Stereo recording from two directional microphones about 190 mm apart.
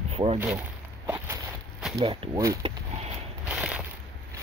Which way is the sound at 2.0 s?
25° right (ahead or behind).